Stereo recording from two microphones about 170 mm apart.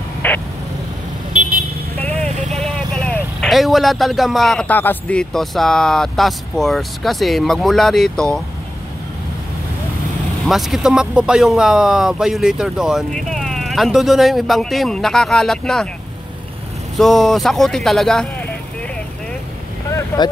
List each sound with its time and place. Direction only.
0.2 s vehicle: 10° left (ahead or behind)
2.0 s vehicle: 5° left (ahead or behind)
2.5 s speech: 5° left (ahead or behind)
10.4 s speech: centre (ahead or behind)
16.9 s speech: centre (ahead or behind)
19.9 s boat: 15° left (ahead or behind)